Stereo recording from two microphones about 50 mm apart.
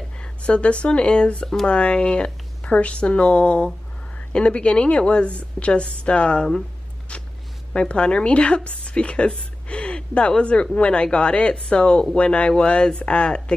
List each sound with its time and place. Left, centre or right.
0.2 s a woman's voice: left
7.7 s a woman's voice: left